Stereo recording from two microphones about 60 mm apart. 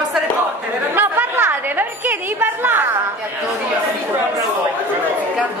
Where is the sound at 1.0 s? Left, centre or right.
Right.